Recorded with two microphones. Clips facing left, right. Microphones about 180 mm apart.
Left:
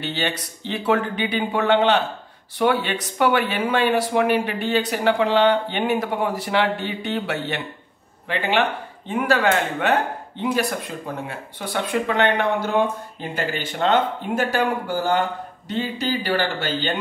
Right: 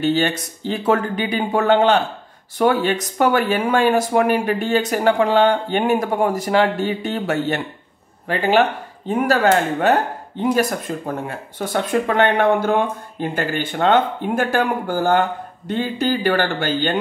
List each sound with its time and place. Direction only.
0.0 s speech: 45° right (ahead or behind)